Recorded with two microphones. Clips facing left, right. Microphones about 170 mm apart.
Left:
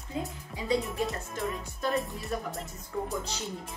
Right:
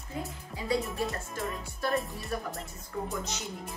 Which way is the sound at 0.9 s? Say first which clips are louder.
Left 1 dB; centre (ahead or behind).